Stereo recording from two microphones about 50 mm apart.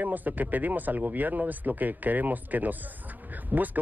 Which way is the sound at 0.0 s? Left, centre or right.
Right.